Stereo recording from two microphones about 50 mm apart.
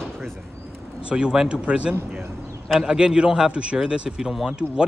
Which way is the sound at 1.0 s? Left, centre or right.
Centre.